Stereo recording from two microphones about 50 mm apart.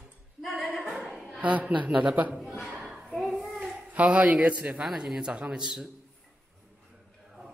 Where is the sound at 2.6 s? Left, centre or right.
Centre.